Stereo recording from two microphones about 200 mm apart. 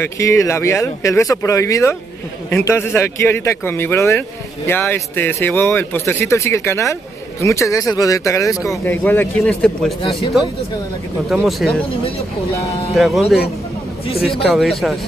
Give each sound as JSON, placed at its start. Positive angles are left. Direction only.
{"t": 0.0, "sound": "speech", "side_deg": 15}
{"t": 11.2, "sound": "speech", "side_deg": 0}
{"t": 12.9, "sound": "speech", "side_deg": 0}
{"t": 14.2, "sound": "speech", "side_deg": 0}